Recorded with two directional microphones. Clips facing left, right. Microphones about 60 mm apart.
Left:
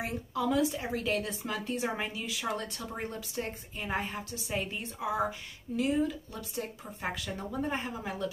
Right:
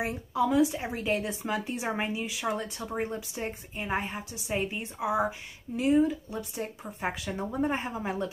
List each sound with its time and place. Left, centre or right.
0.0 s a woman's voice: centre